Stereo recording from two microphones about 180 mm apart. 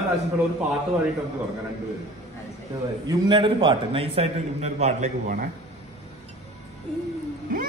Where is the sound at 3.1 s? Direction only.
25° right (ahead or behind); by 5.5 s 45° right (ahead or behind).